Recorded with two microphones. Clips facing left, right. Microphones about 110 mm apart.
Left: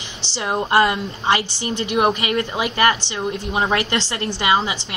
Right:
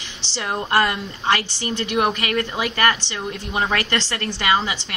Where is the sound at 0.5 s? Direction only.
15° left (ahead or behind).